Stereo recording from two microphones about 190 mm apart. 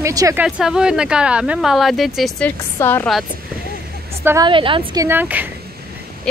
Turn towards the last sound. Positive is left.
turn(degrees=5)  # may be behind; listen again after turning